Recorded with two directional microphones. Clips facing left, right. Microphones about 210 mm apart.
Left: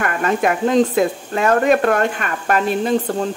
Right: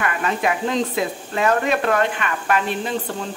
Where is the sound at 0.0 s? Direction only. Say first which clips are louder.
Left 4 dB; 50° left (ahead or behind).